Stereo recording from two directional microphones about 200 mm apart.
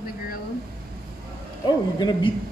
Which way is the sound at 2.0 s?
20° left (ahead or behind).